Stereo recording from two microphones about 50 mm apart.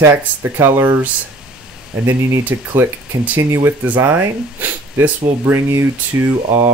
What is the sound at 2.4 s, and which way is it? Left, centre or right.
Speech, right.